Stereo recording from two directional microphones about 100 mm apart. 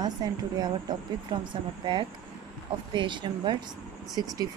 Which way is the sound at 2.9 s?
50° right (ahead or behind).